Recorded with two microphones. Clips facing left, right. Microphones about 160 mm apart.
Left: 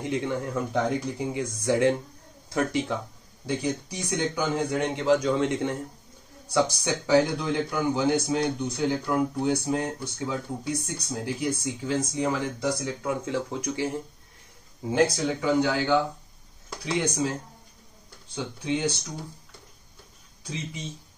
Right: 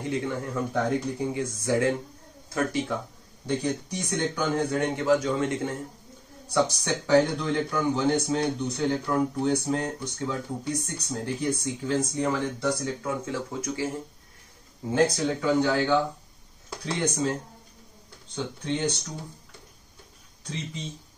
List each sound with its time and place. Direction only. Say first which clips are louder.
0.0 s speech: left 1 dB; 20° left (ahead or behind)
18.3 s speech: left 1 dB; 5° left (ahead or behind)